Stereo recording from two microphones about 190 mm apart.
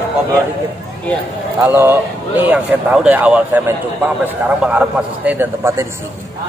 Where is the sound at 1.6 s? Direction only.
10° right (ahead or behind).